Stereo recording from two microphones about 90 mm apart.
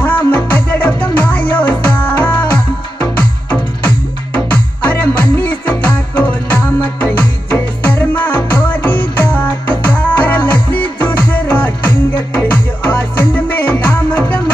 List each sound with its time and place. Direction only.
0.0 s music: 20° left (ahead or behind)